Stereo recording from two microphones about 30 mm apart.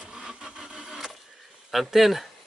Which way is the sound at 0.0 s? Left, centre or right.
Right.